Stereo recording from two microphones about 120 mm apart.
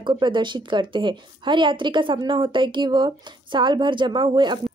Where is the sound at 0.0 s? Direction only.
40° right (ahead or behind).